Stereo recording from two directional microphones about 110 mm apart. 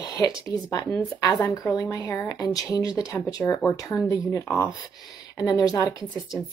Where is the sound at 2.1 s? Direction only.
30° left (ahead or behind).